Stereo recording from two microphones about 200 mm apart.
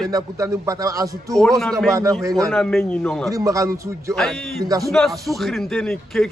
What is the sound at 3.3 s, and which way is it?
Speech, 15° right (ahead or behind).